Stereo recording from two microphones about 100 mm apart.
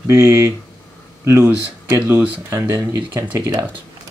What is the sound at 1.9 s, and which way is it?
Speech, 15° right (ahead or behind).